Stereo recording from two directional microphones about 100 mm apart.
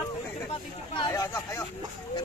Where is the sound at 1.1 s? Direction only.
35° left (ahead or behind).